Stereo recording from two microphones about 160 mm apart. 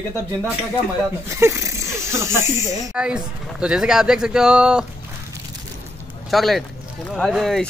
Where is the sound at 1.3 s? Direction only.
15° right (ahead or behind).